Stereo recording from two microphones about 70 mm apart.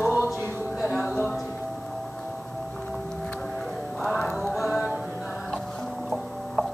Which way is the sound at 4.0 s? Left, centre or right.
Centre.